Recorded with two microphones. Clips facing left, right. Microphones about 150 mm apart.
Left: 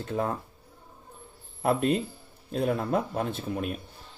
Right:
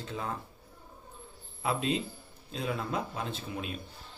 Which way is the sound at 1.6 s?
50° left (ahead or behind).